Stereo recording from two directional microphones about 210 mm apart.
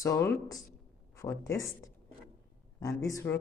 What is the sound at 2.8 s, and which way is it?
Speech, 15° left (ahead or behind).